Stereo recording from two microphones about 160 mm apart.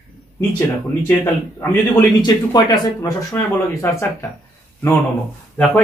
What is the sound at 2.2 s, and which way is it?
Speech, 25° left (ahead or behind).